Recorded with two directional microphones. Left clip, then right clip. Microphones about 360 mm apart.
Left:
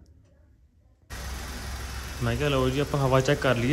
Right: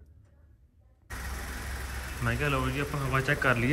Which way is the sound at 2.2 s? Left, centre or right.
Centre.